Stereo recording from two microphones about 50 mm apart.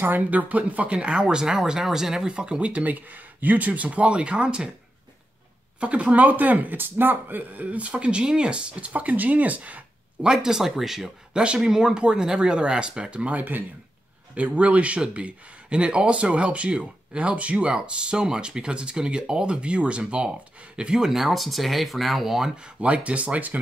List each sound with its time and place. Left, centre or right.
0.0 s speech: right
5.8 s speech: right
10.2 s speech: centre
11.3 s speech: centre
13.4 s speech: right
14.3 s speech: right; by 22.5 s centre
22.6 s speech: right